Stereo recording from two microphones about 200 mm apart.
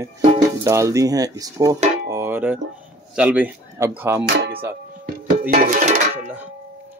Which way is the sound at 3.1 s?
10° right (ahead or behind).